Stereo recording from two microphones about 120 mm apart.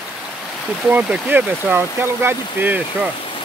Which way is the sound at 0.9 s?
15° right (ahead or behind).